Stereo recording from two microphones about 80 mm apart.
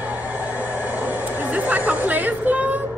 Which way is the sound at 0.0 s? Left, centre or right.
Right.